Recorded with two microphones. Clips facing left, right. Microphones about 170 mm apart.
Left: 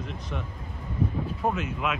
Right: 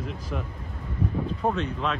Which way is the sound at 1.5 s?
5° left (ahead or behind).